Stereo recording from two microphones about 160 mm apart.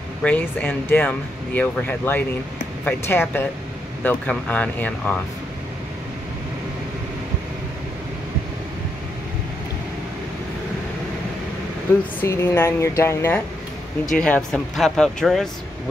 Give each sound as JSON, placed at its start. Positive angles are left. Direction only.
{"t": 0.2, "sound": "speech", "side_deg": 10}
{"t": 12.2, "sound": "speech", "side_deg": 15}